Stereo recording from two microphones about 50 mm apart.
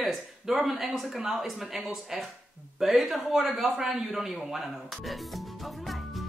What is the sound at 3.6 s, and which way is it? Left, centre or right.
Music, centre.